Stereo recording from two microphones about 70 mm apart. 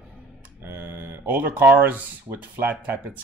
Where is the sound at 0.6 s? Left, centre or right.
Right.